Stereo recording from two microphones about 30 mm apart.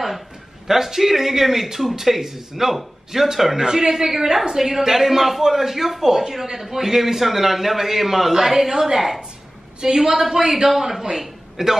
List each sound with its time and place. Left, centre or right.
0.7 s a man's voice: centre
3.6 s a woman's voice: right